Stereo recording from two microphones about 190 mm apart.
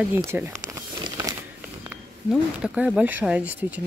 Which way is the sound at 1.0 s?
20° right (ahead or behind).